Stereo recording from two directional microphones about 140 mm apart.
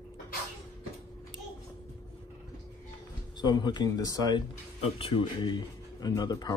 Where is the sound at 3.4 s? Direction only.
30° left (ahead or behind).